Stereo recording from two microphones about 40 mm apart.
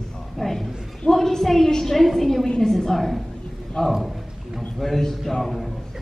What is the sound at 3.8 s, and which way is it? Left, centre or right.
Speech, centre.